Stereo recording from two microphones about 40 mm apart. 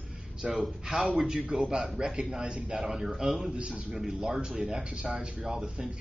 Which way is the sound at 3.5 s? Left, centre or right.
Right.